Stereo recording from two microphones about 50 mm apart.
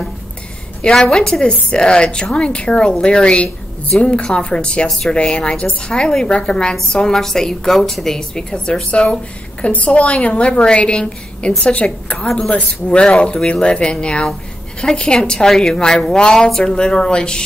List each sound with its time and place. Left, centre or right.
1.1 s a woman's voice: centre
4.8 s speech: centre
5.1 s a woman's voice: centre